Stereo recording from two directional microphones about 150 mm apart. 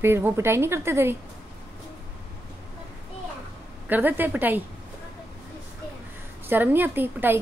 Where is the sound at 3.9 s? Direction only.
10° right (ahead or behind).